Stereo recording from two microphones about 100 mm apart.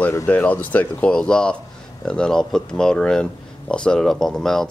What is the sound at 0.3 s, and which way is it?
Speech, 15° left (ahead or behind).